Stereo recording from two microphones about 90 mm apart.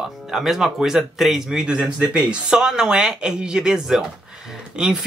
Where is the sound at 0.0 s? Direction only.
5° right (ahead or behind).